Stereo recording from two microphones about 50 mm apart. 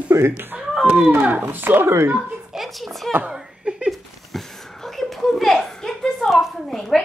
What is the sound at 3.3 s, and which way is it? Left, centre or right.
Laughter, centre.